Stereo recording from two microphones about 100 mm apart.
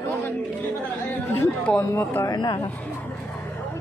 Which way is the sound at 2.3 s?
45° left (ahead or behind).